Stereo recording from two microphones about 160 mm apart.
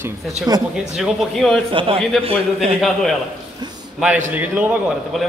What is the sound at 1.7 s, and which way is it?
A man's voice, 35° right (ahead or behind).